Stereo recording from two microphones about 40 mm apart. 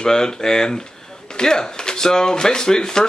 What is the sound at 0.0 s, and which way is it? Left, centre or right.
Speech, centre.